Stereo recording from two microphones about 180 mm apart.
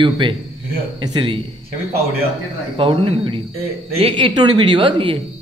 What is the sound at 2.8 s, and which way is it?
A man's voice, 30° right (ahead or behind).